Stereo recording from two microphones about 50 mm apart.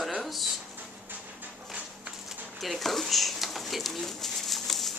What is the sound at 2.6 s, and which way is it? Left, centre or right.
Pigeon, centre.